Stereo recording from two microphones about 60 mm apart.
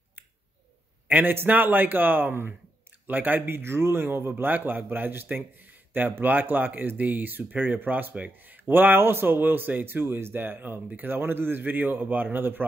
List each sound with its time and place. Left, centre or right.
1.0 s a man's voice: right